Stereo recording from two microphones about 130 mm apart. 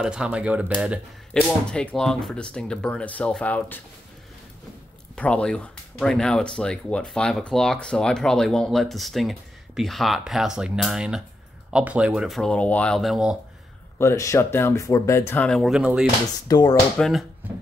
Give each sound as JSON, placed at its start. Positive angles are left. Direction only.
{"t": 0.0, "sound": "speech", "side_deg": -5}
{"t": 1.3, "sound": "speech", "side_deg": 5}
{"t": 5.1, "sound": "speech", "side_deg": 5}
{"t": 12.4, "sound": "speech", "side_deg": 10}
{"t": 13.9, "sound": "speech", "side_deg": 25}
{"t": 15.4, "sound": "speech", "side_deg": 0}
{"t": 15.8, "sound": "speech", "side_deg": -10}
{"t": 16.4, "sound": "speech", "side_deg": 30}
{"t": 17.0, "sound": "speech", "side_deg": 0}